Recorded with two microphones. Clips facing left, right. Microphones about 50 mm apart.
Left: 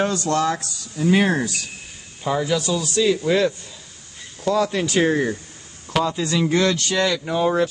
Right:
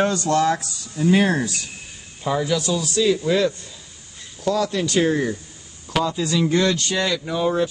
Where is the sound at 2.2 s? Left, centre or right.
Centre.